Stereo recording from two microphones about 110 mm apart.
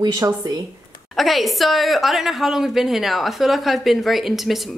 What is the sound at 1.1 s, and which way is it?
A woman's voice, centre (ahead or behind).